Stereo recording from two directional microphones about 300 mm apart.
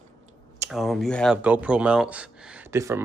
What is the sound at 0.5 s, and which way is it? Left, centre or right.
Speech, centre.